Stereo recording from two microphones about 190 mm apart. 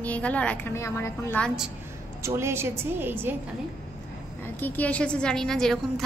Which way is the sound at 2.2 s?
15° right (ahead or behind).